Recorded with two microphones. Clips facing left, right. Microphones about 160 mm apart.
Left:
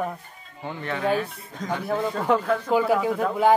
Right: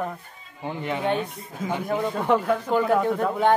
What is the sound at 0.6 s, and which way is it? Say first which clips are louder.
Speech: even; 15° right (ahead or behind).